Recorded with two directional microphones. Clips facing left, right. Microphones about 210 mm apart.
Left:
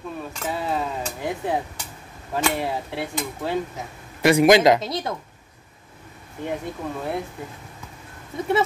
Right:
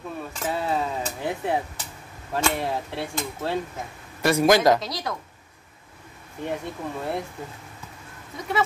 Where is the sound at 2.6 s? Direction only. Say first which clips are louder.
Left 1 dB; centre (ahead or behind).